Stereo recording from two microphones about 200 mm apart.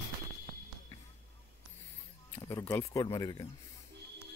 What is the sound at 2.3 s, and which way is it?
Speech, 10° left (ahead or behind).